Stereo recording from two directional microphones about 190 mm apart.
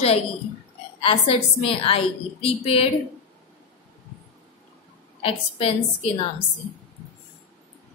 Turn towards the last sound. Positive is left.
turn(degrees=30)  # may be behind; listen again after turning